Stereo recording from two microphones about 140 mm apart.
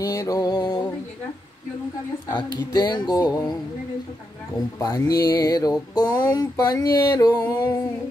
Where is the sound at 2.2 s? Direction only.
30° left (ahead or behind).